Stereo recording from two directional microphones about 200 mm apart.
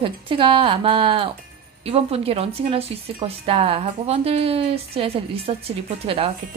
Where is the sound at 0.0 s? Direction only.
25° right (ahead or behind).